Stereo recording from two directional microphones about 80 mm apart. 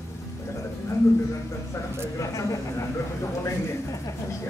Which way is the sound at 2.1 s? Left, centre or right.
Left.